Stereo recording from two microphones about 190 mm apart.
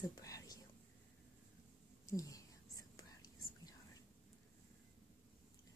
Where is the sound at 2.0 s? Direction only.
15° left (ahead or behind).